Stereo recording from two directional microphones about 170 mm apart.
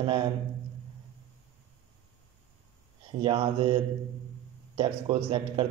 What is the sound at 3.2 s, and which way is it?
A man's voice, 30° right (ahead or behind).